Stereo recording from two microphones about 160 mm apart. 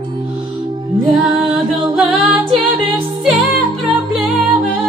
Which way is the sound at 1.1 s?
Centre (ahead or behind).